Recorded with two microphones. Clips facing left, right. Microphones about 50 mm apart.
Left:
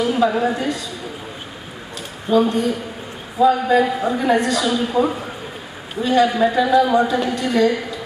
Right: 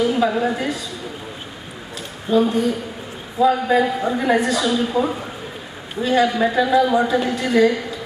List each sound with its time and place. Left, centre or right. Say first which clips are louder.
0.0 s a sound: left 1 dB; centre
0.3 s a man's voice: left 1 dB; centre
2.3 s a woman's voice: left 1 dB; centre
3.4 s a man's voice: left 1 dB; centre
4.2 s a woman's voice: even; centre